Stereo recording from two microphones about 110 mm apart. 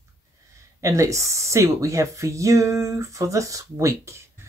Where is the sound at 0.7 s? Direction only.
30° right (ahead or behind).